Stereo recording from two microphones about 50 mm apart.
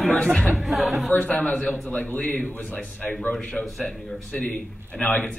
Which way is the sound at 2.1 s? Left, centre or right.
Left.